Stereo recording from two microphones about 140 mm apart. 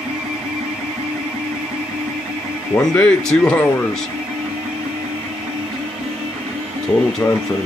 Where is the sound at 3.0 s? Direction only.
10° left (ahead or behind).